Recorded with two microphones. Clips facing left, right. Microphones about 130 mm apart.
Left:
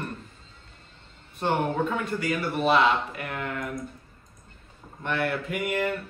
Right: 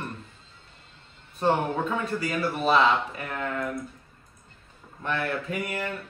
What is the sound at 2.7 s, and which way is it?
Speech, 35° right (ahead or behind).